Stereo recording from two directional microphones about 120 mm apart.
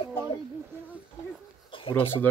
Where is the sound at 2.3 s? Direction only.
15° left (ahead or behind).